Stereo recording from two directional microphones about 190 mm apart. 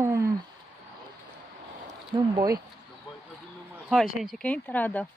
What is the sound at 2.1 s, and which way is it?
Speech, 20° right (ahead or behind).